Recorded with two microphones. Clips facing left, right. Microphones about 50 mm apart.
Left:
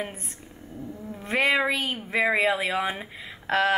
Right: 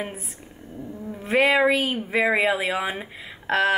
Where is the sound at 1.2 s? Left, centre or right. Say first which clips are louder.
Right 4 dB; centre.